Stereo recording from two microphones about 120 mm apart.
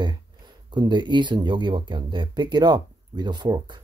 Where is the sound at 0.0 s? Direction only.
40° right (ahead or behind).